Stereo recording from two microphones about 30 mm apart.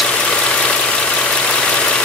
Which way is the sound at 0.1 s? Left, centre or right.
Left.